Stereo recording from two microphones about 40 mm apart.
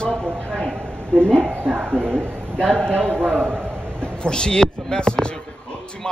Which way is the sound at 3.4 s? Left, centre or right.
Right.